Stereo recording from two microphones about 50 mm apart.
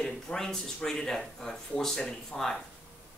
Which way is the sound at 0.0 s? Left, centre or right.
Centre.